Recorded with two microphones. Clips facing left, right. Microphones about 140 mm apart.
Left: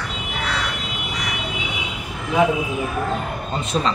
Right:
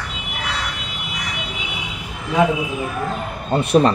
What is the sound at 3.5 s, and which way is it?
Speech, 60° right (ahead or behind).